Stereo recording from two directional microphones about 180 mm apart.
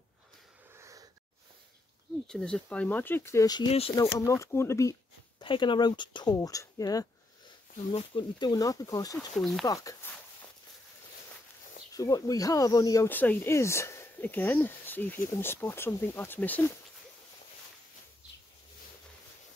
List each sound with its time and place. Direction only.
0.7 s wheeze: 15° right (ahead or behind)
2.2 s speech: 5° left (ahead or behind)
5.4 s speech: 25° left (ahead or behind)
7.9 s speech: 30° left (ahead or behind)
9.4 s speech: centre (ahead or behind)
9.7 s speech: 20° left (ahead or behind)
12.0 s speech: 20° left (ahead or behind)